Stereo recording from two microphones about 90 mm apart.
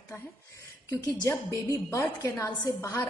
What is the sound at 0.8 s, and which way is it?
A woman's voice, 40° left (ahead or behind).